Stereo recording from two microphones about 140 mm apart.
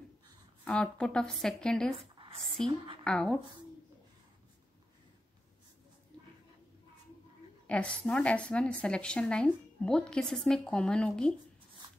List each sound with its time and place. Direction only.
0.7 s a woman's voice: 5° left (ahead or behind)
2.7 s a woman's voice: 35° right (ahead or behind)
3.0 s a woman's voice: 5° left (ahead or behind)
7.6 s a woman's voice: 10° left (ahead or behind)